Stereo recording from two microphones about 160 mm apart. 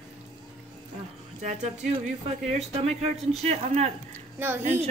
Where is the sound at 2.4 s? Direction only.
40° right (ahead or behind).